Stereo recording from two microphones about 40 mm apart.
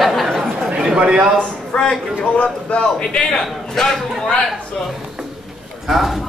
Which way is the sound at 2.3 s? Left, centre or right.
Left.